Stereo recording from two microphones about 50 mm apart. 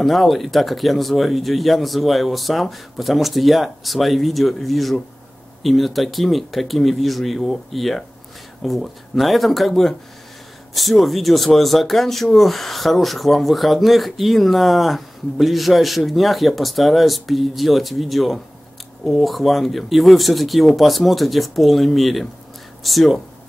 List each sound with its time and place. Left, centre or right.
0.0 s speech: centre